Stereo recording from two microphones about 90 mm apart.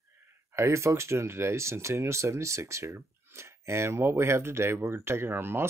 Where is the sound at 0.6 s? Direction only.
30° right (ahead or behind).